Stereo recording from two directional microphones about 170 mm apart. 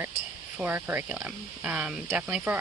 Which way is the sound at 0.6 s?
10° right (ahead or behind).